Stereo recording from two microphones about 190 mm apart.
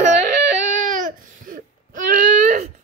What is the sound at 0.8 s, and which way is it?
Baby cry, 45° right (ahead or behind).